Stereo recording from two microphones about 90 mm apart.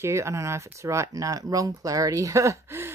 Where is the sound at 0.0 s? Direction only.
30° right (ahead or behind).